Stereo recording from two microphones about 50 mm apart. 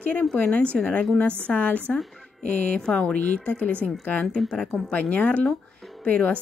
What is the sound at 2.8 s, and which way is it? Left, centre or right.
Speech, left.